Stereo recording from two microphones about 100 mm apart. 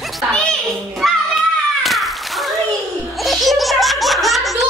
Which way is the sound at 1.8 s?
Centre (ahead or behind).